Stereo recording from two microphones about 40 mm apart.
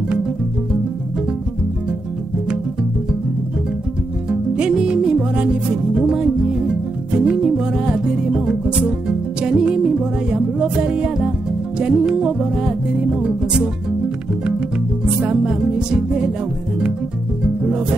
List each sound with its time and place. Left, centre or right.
4.3 s music: right
9.4 s music: right
15.1 s speech: centre
15.6 s music: centre
17.4 s music: centre